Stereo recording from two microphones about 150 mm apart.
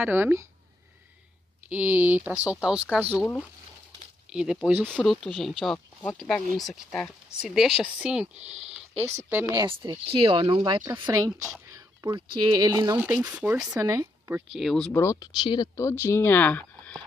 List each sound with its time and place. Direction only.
0.0 s speech: 15° right (ahead or behind)
1.7 s speech: 10° right (ahead or behind)
4.3 s speech: 5° right (ahead or behind)
8.4 s speech: 45° right (ahead or behind)
9.0 s speech: 15° right (ahead or behind)
9.7 s speech: 35° right (ahead or behind)
11.1 s speech: 20° right (ahead or behind)
12.9 s speech: 10° right (ahead or behind)
13.7 s speech: 20° right (ahead or behind)
14.5 s speech: centre (ahead or behind)
14.9 s speech: 15° left (ahead or behind)
15.1 s speech: 30° left (ahead or behind); by 17.0 s 10° left (ahead or behind)